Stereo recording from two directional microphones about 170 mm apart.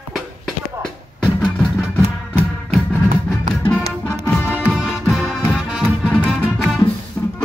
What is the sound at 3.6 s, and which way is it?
Music, 10° left (ahead or behind).